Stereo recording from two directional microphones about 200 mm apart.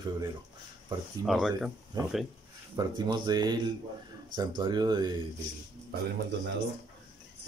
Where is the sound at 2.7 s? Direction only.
20° right (ahead or behind).